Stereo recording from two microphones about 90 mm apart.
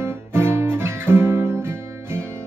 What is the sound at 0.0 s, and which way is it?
Guitar, 30° right (ahead or behind).